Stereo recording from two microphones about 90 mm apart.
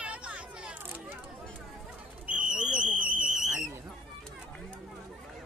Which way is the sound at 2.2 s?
15° right (ahead or behind).